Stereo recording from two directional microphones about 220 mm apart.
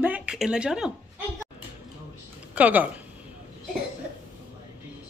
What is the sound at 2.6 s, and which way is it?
Speech, 5° right (ahead or behind).